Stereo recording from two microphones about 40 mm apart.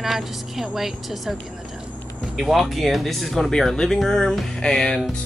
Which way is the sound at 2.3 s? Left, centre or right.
Centre.